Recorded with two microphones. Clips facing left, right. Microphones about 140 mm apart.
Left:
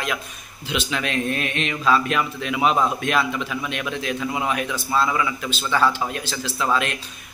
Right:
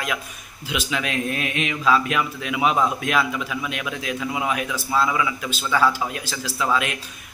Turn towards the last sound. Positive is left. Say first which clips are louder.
# even
turn(degrees=-5)  # may be behind; listen again after turning